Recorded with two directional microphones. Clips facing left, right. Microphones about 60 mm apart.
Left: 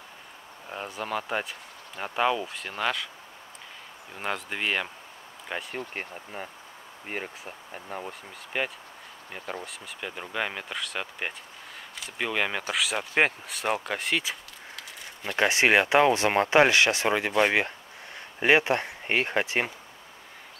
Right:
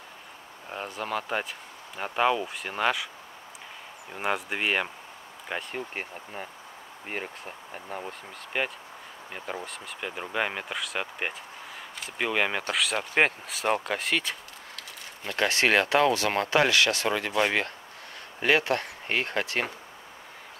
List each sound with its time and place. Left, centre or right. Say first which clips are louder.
0.7 s speech: even; centre
4.1 s speech: right 3 dB; centre
5.5 s speech: even; centre
14.8 s speech: left 2 dB; centre